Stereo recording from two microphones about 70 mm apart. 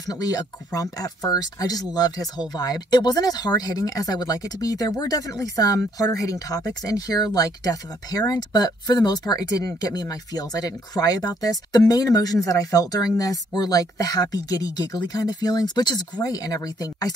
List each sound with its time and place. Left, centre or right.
0.0 s speech: left